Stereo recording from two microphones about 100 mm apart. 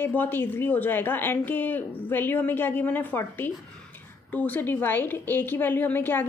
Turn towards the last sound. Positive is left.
turn(degrees=20)  # may be behind; listen again after turning